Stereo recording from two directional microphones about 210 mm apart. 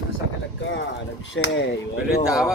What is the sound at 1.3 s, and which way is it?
Speech, 60° left (ahead or behind).